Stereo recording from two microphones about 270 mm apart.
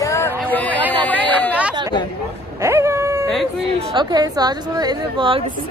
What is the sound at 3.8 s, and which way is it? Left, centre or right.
A woman's voice, centre.